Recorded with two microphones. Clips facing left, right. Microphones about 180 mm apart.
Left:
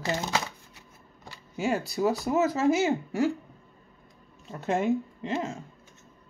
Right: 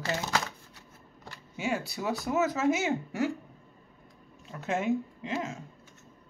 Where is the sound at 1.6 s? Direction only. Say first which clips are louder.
Left 6 dB; 40° left (ahead or behind).